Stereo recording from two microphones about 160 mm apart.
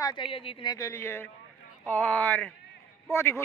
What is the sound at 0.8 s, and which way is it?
A man's voice, 15° left (ahead or behind).